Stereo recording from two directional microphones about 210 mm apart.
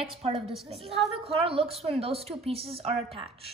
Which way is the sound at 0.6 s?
30° right (ahead or behind).